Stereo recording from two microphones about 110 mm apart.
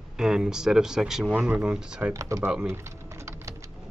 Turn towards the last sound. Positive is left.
turn(degrees=-25)  # may be behind; listen again after turning